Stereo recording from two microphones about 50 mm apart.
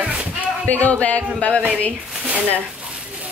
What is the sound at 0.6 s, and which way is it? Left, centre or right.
Speech, left.